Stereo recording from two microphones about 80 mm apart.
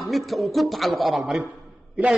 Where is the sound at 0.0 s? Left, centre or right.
Centre.